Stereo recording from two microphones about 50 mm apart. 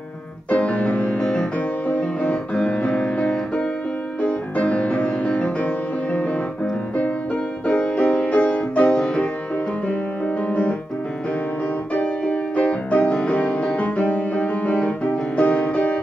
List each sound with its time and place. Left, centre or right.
0.5 s music: left
7.6 s music: left
11.9 s music: left